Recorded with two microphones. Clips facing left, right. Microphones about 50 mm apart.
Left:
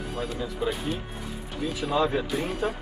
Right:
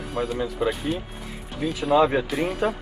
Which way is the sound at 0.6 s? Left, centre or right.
Right.